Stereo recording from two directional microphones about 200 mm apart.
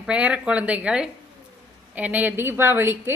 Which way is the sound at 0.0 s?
5° right (ahead or behind).